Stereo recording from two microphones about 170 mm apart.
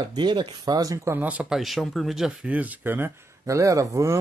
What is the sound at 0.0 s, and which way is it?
Speech, 25° right (ahead or behind).